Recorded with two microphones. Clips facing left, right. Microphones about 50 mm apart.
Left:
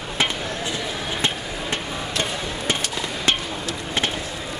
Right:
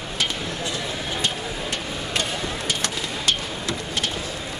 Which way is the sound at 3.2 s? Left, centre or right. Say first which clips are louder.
Left 2 dB; left.